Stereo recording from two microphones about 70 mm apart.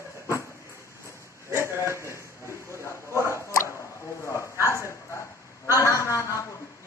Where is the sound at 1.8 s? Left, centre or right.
Right.